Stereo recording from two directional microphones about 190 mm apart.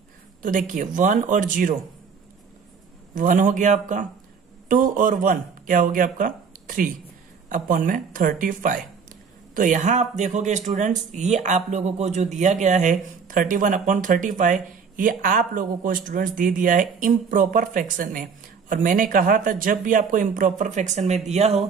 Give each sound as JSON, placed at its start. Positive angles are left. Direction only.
{"t": 0.4, "sound": "speech", "side_deg": -45}
{"t": 3.2, "sound": "speech", "side_deg": -45}